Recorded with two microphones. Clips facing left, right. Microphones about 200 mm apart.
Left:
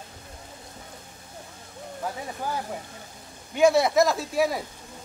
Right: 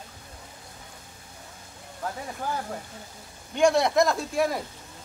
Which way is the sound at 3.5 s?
5° left (ahead or behind).